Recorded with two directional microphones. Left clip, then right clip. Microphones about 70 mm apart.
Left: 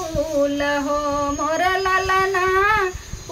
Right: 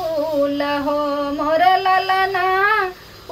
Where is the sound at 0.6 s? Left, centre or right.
Left.